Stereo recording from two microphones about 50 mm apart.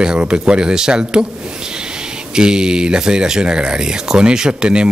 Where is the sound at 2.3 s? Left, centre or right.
Centre.